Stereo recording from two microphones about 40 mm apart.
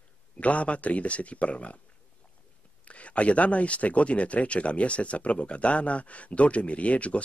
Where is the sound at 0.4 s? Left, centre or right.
Left.